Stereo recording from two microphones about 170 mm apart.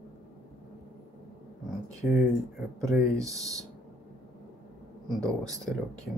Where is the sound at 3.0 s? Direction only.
20° right (ahead or behind).